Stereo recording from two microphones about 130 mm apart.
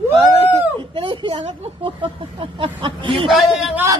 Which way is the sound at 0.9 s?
40° right (ahead or behind).